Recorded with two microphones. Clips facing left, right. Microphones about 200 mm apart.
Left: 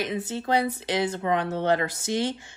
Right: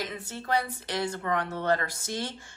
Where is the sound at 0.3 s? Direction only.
20° left (ahead or behind).